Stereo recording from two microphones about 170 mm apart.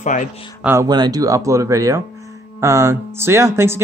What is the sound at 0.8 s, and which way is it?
Speech, 25° right (ahead or behind).